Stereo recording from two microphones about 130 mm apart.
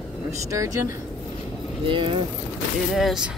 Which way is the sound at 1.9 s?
40° right (ahead or behind).